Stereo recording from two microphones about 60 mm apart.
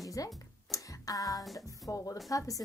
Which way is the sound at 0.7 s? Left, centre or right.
Left.